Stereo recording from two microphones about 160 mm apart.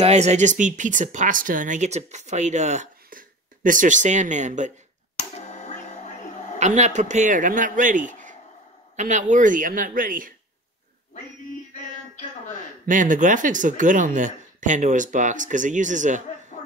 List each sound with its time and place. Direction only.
0.0 s speech: 45° right (ahead or behind)
5.1 s a sound: 50° left (ahead or behind)
6.6 s speech: 45° right (ahead or behind)
12.8 s speech: 55° right (ahead or behind)